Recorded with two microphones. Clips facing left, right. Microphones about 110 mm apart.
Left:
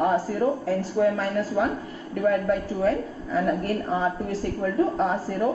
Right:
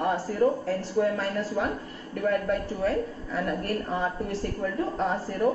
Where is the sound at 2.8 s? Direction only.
Centre (ahead or behind).